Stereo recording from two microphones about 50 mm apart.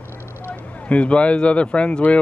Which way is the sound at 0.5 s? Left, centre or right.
Left.